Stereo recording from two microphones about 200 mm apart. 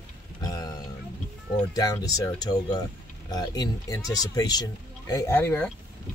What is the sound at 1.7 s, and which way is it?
Speech, 20° left (ahead or behind).